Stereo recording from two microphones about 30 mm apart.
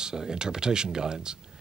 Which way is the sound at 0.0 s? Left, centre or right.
Right.